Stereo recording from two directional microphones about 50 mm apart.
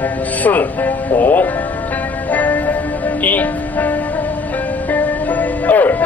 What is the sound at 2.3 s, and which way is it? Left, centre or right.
Music, left.